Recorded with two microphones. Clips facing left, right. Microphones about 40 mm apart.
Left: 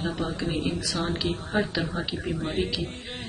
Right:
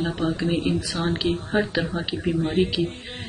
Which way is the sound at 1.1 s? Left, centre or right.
Centre.